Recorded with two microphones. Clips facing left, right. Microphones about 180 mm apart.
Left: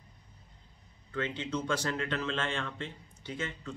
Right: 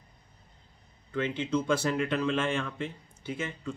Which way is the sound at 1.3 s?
20° left (ahead or behind).